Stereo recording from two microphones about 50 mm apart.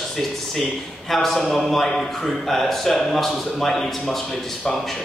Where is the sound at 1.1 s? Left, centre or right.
Centre.